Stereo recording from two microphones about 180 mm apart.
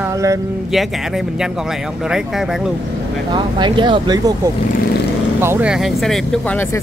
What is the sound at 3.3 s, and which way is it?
Speech, 25° right (ahead or behind).